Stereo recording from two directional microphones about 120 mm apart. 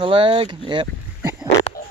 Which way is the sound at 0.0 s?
45° right (ahead or behind).